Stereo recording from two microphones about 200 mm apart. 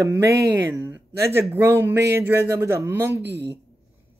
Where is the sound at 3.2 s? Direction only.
60° right (ahead or behind).